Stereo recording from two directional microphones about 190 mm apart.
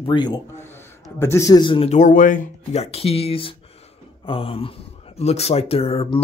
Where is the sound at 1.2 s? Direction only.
15° left (ahead or behind).